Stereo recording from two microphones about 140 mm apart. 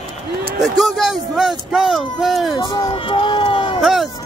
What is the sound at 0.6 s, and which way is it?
Speech, centre (ahead or behind).